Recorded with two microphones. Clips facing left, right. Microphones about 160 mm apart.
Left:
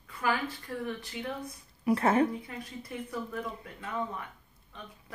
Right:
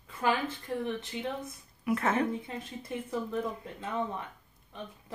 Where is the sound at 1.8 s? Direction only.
30° left (ahead or behind).